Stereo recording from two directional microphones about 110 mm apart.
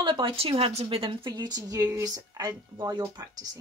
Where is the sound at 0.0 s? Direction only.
50° right (ahead or behind).